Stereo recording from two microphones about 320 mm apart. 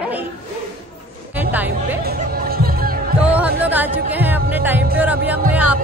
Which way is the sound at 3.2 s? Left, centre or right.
Centre.